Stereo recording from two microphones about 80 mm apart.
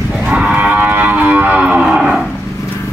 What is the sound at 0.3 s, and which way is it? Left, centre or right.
Livestock, centre.